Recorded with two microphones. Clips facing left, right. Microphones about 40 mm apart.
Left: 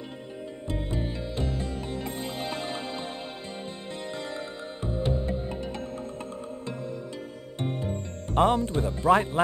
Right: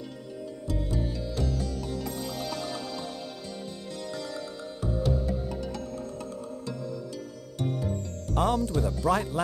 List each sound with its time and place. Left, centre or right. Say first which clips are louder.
0.7 s music: even; left
4.1 s music: left 1 dB; left
7.6 s music: even; left